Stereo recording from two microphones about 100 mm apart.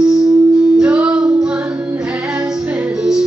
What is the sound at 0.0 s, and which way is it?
Music, 5° right (ahead or behind).